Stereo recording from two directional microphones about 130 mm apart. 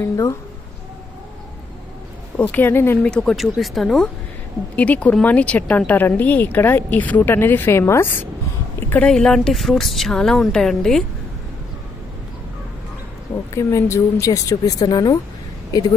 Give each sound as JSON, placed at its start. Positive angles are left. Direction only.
{"t": 0.0, "sound": "a woman's voice", "side_deg": 25}
{"t": 2.3, "sound": "speech", "side_deg": 15}
{"t": 13.6, "sound": "a woman's voice", "side_deg": 25}